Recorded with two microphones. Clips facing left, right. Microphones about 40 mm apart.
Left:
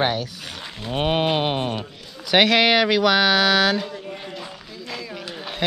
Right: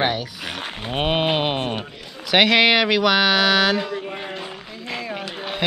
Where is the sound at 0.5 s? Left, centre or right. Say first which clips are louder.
Right 2 dB; right.